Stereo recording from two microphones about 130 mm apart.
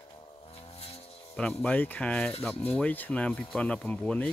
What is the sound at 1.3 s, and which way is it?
Speech, 10° left (ahead or behind).